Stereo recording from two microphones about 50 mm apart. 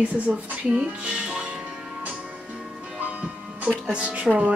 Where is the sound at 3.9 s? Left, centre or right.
Right.